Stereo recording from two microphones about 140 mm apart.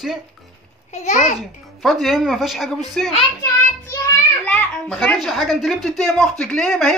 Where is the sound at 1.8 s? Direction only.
Centre (ahead or behind).